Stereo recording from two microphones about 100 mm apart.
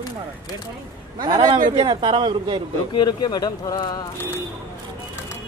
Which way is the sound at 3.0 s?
45° left (ahead or behind).